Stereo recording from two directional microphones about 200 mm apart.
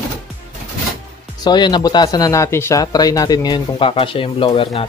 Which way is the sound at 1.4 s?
20° left (ahead or behind).